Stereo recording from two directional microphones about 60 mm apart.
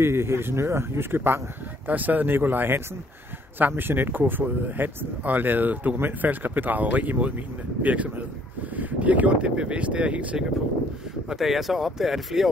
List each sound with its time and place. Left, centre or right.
0.0 s speech: right
1.9 s speech: right
11.2 s speech: centre